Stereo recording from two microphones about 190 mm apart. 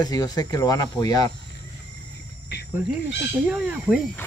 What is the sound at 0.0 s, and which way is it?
Speech, 20° left (ahead or behind).